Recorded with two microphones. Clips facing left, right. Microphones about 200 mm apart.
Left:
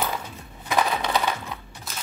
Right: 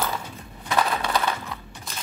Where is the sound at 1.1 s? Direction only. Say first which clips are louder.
Even; 10° left (ahead or behind).